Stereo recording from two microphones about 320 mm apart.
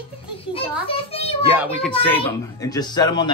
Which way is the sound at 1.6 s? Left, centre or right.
Centre.